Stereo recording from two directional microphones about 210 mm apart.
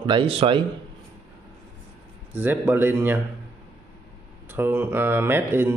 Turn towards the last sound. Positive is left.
turn(degrees=-10)  # may be behind; listen again after turning